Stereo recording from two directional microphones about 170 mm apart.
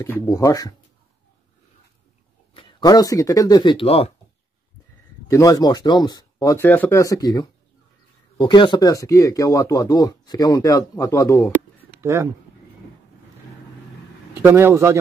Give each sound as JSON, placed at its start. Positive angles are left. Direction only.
{"t": 0.3, "sound": "speech", "side_deg": 20}
{"t": 2.5, "sound": "speech", "side_deg": 25}
{"t": 5.3, "sound": "speech", "side_deg": 20}
{"t": 12.0, "sound": "speech", "side_deg": -15}
{"t": 14.4, "sound": "speech", "side_deg": -15}